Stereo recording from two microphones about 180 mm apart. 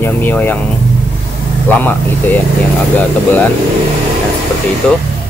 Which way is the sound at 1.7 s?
10° left (ahead or behind).